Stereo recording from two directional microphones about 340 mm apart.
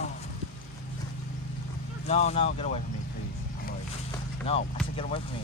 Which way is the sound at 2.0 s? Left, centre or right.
Centre.